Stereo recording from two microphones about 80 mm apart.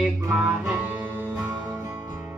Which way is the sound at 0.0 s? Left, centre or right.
Centre.